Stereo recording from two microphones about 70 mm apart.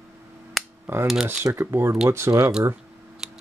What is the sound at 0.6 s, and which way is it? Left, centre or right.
Cap gun, centre.